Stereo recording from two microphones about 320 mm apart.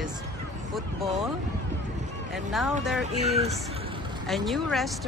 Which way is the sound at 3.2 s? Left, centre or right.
Centre.